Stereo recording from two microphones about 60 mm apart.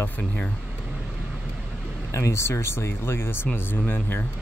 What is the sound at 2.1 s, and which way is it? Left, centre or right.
Speech, left.